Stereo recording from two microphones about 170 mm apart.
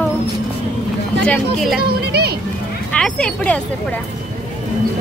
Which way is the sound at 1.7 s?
70° right (ahead or behind).